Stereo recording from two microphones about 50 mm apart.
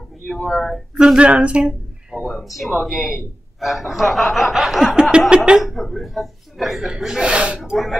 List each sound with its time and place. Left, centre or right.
0.4 s speech: centre
0.9 s speech: centre
2.2 s speech: centre
5.3 s speech: centre
5.6 s speech: centre
7.1 s speech: centre
7.7 s speech: centre